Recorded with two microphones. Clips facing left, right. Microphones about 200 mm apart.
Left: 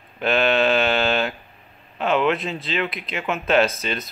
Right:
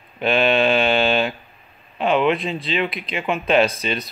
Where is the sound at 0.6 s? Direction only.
15° right (ahead or behind).